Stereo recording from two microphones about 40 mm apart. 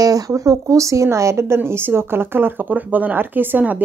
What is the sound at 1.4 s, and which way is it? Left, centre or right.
Speech, right.